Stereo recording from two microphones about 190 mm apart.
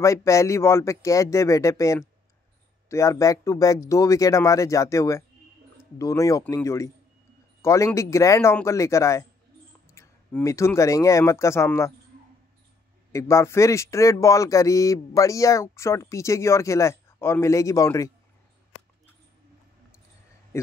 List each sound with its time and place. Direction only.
0.0 s speech: 15° left (ahead or behind)
13.1 s speech: 15° left (ahead or behind)
20.5 s a sound: 15° left (ahead or behind)